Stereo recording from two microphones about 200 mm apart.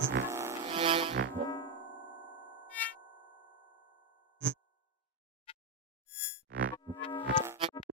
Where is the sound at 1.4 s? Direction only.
20° left (ahead or behind).